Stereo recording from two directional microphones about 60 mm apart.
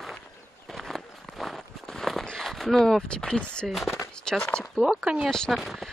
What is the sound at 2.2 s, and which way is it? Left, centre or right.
Speech, centre.